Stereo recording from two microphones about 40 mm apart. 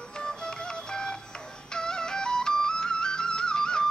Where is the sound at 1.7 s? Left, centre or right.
Centre.